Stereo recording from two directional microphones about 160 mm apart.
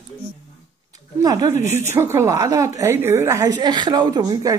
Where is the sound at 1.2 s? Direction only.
25° right (ahead or behind).